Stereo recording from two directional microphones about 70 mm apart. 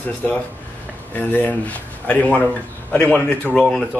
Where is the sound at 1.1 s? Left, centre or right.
Left.